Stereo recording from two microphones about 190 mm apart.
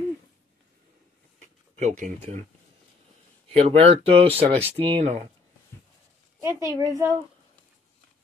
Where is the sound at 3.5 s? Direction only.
30° right (ahead or behind).